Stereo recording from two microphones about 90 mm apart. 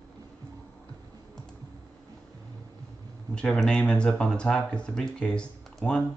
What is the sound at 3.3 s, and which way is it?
Speech, 5° left (ahead or behind).